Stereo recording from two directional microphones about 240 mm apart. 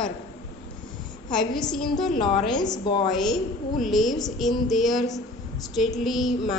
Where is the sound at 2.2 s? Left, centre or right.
Left.